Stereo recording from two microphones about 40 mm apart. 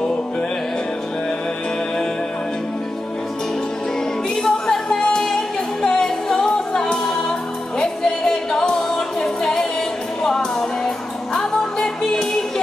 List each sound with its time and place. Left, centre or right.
4.4 s music: centre
5.8 s a capella: centre
7.8 s music: centre
11.3 s music: centre